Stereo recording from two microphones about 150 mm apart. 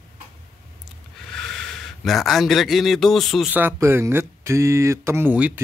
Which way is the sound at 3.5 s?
15° right (ahead or behind).